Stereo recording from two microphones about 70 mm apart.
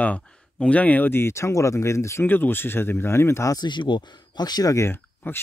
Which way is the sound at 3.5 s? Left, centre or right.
Left.